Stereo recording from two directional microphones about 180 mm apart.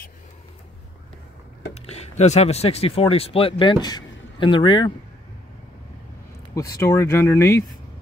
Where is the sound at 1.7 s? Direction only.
35° left (ahead or behind).